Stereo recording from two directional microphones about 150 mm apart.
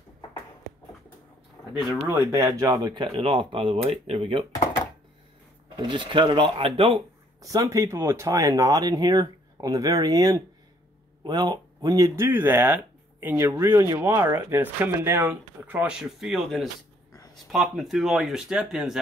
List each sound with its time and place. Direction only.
2.0 s speech: 20° right (ahead or behind); by 4.5 s 35° right (ahead or behind)
5.8 s speech: 30° right (ahead or behind)
7.4 s speech: 20° right (ahead or behind); by 18.9 s 5° right (ahead or behind)